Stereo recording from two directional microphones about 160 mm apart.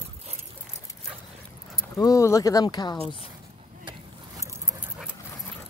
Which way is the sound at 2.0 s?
20° left (ahead or behind).